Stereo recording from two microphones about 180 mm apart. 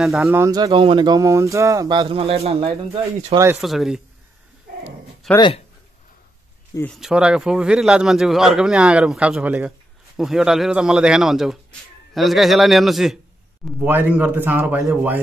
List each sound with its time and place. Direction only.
0.0 s speech: centre (ahead or behind)
0.4 s speech: 20° right (ahead or behind); by 3.3 s 35° right (ahead or behind)
3.6 s speech: centre (ahead or behind)
5.2 s speech: centre (ahead or behind)
6.9 s speech: centre (ahead or behind)